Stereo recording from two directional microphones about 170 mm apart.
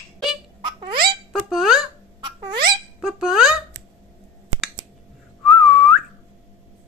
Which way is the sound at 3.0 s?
5° right (ahead or behind).